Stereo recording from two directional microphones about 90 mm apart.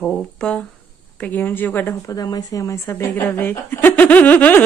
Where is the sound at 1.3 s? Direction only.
20° left (ahead or behind).